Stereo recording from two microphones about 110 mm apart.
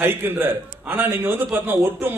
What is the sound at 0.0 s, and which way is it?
A man's voice, 20° right (ahead or behind).